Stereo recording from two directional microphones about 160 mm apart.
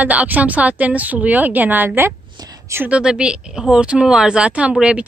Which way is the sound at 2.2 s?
25° right (ahead or behind).